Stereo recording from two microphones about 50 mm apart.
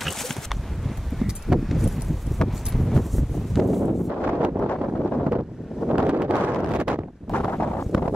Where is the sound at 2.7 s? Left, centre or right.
Centre.